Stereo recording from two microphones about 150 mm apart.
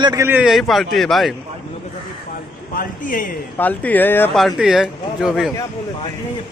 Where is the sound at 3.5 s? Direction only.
10° left (ahead or behind).